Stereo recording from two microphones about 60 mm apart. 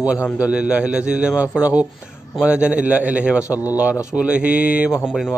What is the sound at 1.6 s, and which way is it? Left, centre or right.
A man's voice, right.